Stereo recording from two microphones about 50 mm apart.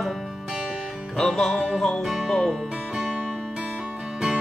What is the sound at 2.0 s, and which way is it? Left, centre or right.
Music, centre.